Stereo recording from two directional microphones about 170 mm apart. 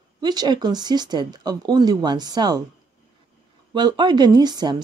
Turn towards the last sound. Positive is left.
turn(degrees=-25)  # may be behind; listen again after turning